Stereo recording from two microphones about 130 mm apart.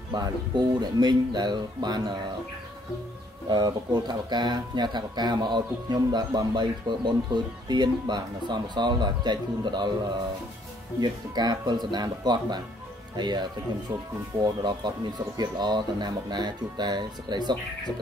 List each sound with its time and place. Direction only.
0.1 s speech: 35° right (ahead or behind)
3.4 s speech: 30° right (ahead or behind)
11.0 s speech: 30° right (ahead or behind)